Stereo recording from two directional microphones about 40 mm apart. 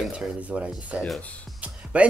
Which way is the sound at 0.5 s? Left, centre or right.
Right.